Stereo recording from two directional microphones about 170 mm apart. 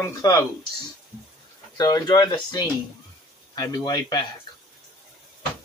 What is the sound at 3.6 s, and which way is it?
Speech, 20° left (ahead or behind).